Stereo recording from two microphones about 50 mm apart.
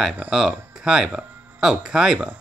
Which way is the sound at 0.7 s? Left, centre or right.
Centre.